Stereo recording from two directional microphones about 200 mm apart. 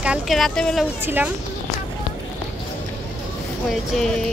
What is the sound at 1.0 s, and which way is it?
Speech, 10° right (ahead or behind).